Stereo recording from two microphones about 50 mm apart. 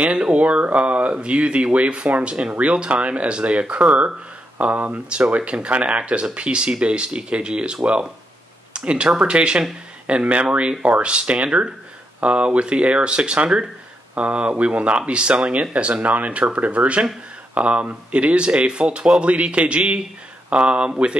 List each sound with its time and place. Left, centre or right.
0.0 s speech: right